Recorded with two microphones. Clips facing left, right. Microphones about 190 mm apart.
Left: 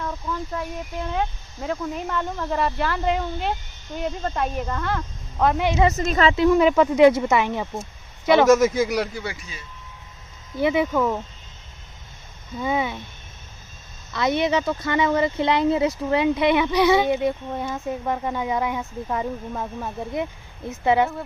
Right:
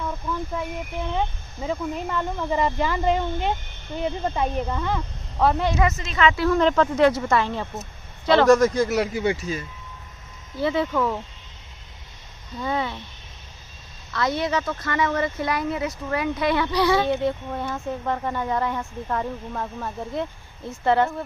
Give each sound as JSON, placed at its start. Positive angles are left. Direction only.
{"t": 0.0, "sound": "speech", "side_deg": 0}
{"t": 3.0, "sound": "speech", "side_deg": 0}
{"t": 4.2, "sound": "speech", "side_deg": -10}
{"t": 5.9, "sound": "a woman's voice", "side_deg": 40}
{"t": 6.3, "sound": "speech", "side_deg": 15}
{"t": 8.9, "sound": "speech", "side_deg": -5}
{"t": 9.2, "sound": "speech", "side_deg": -25}
{"t": 10.6, "sound": "speech", "side_deg": 15}
{"t": 12.5, "sound": "speech", "side_deg": 10}
{"t": 14.1, "sound": "speech", "side_deg": 20}